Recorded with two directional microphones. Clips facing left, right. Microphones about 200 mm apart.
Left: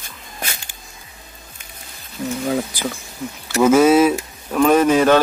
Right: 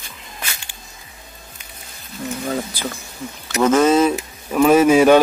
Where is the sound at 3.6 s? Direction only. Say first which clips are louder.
Left 2 dB; 10° left (ahead or behind).